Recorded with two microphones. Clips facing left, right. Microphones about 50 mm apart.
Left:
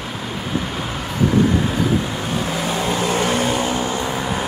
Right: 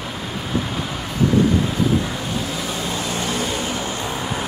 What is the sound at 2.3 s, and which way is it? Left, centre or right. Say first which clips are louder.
Vehicle: left 4 dB; left.